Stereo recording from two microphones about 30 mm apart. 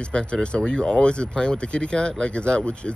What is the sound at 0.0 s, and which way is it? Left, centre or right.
Speech, left.